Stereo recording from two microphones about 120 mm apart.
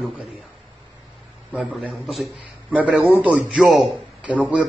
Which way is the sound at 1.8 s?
10° right (ahead or behind).